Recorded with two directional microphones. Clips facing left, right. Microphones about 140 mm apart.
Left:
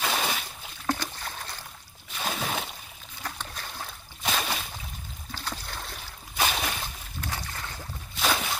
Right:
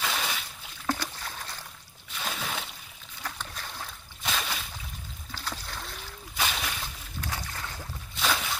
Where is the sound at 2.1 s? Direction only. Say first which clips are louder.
Left 4 dB; 30° left (ahead or behind).